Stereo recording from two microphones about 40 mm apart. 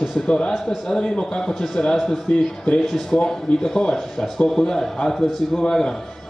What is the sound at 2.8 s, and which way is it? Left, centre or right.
A man's voice, centre.